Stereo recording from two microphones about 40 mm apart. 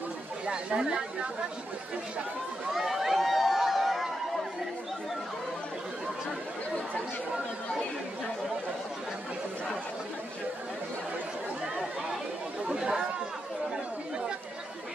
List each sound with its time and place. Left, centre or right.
0.5 s a woman's voice: right
2.7 s a sound: centre
12.6 s a woman's voice: centre